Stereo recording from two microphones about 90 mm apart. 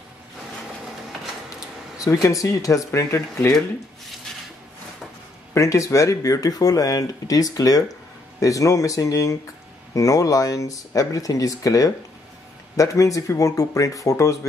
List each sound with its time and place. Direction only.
2.0 s speech: 35° left (ahead or behind)
5.5 s speech: 35° left (ahead or behind)